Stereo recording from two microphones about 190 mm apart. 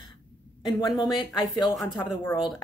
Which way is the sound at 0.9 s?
20° left (ahead or behind).